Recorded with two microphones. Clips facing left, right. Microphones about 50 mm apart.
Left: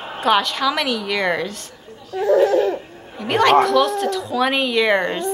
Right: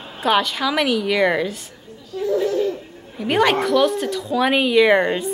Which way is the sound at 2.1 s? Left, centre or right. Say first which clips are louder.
Left 5 dB; left.